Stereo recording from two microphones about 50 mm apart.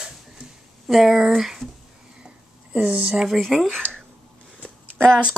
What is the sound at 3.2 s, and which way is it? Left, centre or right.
Speech, centre.